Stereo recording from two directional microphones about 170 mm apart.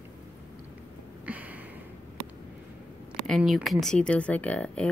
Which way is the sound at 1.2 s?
10° right (ahead or behind).